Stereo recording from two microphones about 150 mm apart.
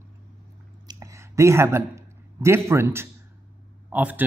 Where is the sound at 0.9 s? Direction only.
20° right (ahead or behind).